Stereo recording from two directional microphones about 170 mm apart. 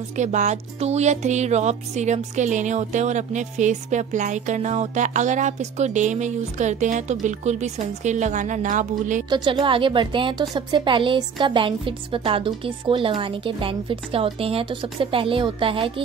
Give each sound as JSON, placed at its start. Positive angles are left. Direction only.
{"t": 0.1, "sound": "speech", "side_deg": -45}
{"t": 9.3, "sound": "a woman's voice", "side_deg": -30}